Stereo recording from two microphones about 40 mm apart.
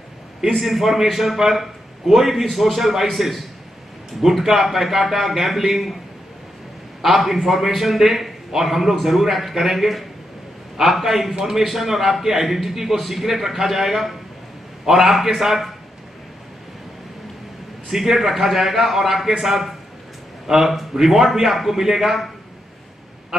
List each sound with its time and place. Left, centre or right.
0.5 s a man's voice: centre
7.0 s a man's voice: centre
17.8 s a man's voice: centre